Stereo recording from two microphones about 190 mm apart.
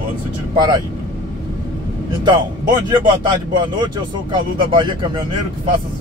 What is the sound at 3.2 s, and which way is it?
Speech, 25° right (ahead or behind).